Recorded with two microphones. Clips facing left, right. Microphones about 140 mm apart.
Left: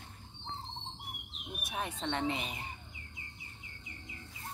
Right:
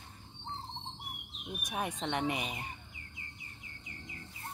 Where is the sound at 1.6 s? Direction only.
15° right (ahead or behind).